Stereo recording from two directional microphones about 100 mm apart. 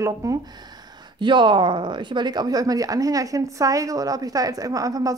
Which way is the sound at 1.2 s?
50° right (ahead or behind).